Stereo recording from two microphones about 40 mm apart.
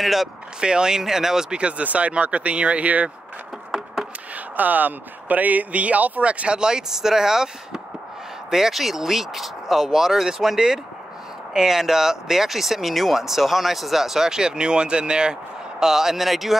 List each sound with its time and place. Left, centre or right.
0.0 s speech: centre
0.6 s speech: right
1.6 s speech: right
3.7 s a sound: centre
4.6 s speech: right
6.6 s speech: centre
15.8 s speech: centre